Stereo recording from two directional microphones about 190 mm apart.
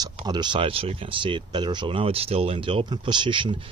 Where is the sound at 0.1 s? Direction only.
25° right (ahead or behind).